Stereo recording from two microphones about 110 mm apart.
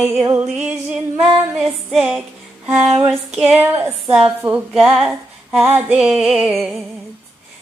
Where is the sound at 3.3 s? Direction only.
10° right (ahead or behind).